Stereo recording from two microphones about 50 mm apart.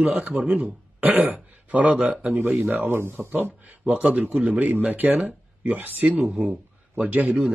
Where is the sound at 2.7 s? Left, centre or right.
Right.